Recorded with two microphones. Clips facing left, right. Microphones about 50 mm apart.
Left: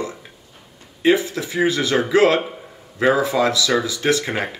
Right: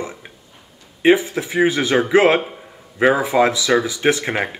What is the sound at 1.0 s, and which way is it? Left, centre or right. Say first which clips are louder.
Speech: right 2 dB; right.